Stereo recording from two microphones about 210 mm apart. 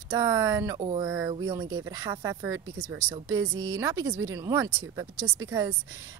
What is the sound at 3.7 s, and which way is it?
Speech, 15° right (ahead or behind).